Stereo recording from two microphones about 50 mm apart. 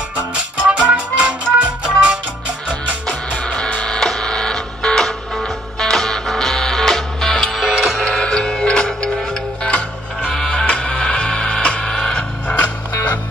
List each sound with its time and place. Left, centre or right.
0.7 s music: right
3.3 s printer: left; by 7.9 s centre
7.9 s music: centre
9.6 s music: left